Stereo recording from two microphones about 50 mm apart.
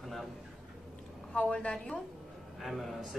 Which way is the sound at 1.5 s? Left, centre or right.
Left.